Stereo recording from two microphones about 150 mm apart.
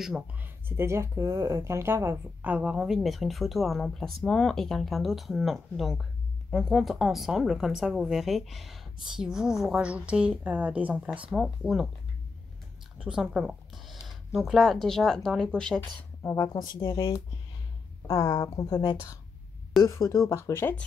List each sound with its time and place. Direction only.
0.0 s a woman's voice: 5° right (ahead or behind)
12.9 s speech: 5° right (ahead or behind)
16.2 s a woman's voice: 20° left (ahead or behind)
18.0 s a woman's voice: 20° left (ahead or behind)